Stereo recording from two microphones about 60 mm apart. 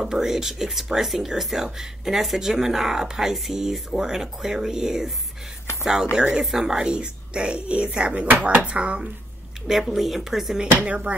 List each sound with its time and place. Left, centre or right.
0.0 s speech: centre
6.1 s speech: centre
6.4 s speech: centre
9.7 s speech: centre
10.6 s speech: right